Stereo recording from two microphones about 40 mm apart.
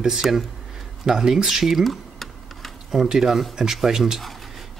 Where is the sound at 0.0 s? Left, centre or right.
Centre.